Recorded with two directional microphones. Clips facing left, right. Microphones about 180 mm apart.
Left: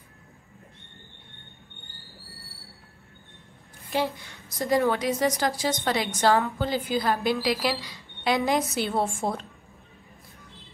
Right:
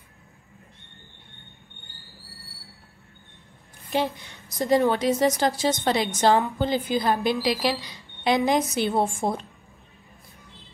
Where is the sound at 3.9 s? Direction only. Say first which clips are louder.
Right 2 dB; 20° right (ahead or behind).